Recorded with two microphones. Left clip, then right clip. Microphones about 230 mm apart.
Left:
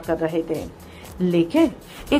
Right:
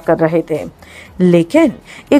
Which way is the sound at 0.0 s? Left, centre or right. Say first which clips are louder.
Right 10 dB; right.